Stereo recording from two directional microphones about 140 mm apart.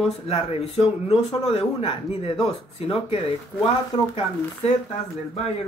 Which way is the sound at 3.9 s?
50° left (ahead or behind).